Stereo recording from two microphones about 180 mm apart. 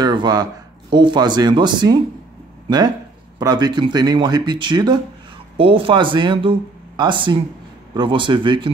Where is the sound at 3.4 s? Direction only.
20° right (ahead or behind).